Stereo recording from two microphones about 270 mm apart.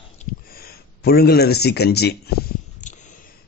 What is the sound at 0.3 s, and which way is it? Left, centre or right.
Speech, left.